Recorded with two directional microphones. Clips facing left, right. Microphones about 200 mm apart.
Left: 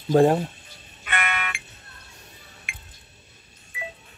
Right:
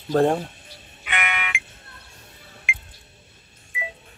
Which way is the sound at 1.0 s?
15° right (ahead or behind).